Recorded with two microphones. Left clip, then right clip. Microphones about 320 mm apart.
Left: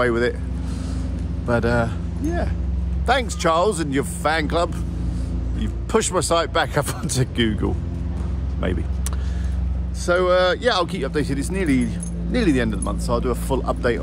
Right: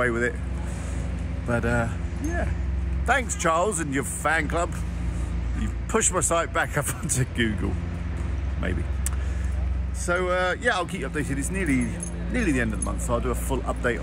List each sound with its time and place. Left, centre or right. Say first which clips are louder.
0.0 s speech: left 4 dB; centre
1.5 s speech: left 5 dB; centre
3.1 s speech: left 4 dB; centre
10.0 s speech: left 7 dB; centre